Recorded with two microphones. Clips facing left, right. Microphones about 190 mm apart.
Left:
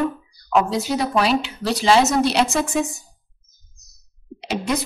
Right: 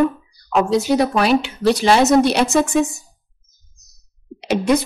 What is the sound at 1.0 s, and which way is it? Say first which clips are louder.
A woman's voice: right 4 dB; 55° right (ahead or behind).